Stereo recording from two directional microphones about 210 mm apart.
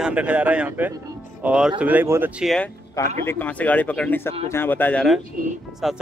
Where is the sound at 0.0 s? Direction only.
5° right (ahead or behind).